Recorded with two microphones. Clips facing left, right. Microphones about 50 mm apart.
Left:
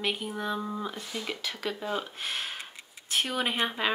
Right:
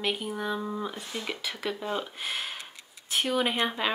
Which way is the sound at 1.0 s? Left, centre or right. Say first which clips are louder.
Even; right.